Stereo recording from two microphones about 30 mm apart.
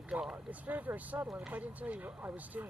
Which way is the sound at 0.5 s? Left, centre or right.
Right.